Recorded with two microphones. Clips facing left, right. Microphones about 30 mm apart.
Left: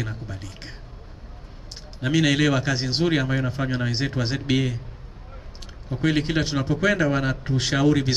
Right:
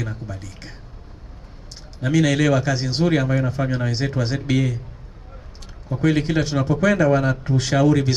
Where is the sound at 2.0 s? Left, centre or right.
Centre.